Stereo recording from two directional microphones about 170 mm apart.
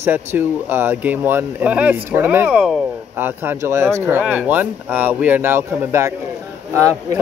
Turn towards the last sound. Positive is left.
turn(degrees=-20)  # may be behind; listen again after turning